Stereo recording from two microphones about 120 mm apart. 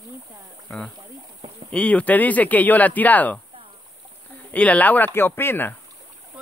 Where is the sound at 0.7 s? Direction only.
5° left (ahead or behind).